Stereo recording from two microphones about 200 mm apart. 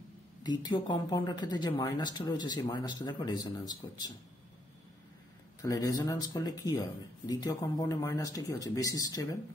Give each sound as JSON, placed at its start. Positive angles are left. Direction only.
{"t": 0.4, "sound": "speech", "side_deg": 20}
{"t": 5.6, "sound": "speech", "side_deg": 15}